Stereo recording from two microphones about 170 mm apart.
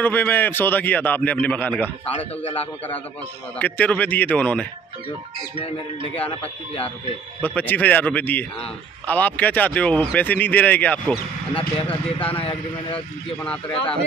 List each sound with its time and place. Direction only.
0.0 s speech: 10° left (ahead or behind)
2.0 s speech: 35° left (ahead or behind)
3.5 s speech: 10° left (ahead or behind)
7.4 s speech: 10° left (ahead or behind)
11.5 s speech: 35° left (ahead or behind)